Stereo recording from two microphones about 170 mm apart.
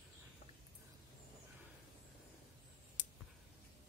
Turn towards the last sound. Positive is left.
turn(degrees=50)  # may be behind; listen again after turning